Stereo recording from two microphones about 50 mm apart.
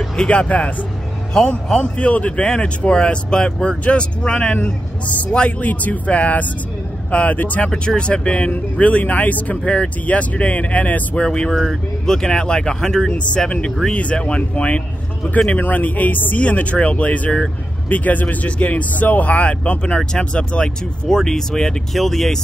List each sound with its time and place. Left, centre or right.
0.1 s speech: centre
5.7 s speech: left
7.6 s speech: centre
9.6 s speech: centre
10.0 s speech: left
11.2 s speech: centre
13.5 s speech: left; by 22.4 s centre